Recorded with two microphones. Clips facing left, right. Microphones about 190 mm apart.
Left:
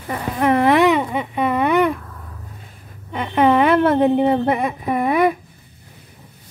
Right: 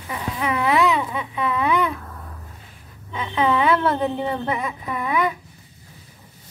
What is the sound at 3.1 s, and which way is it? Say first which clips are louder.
Speech: left 6 dB; 55° left (ahead or behind).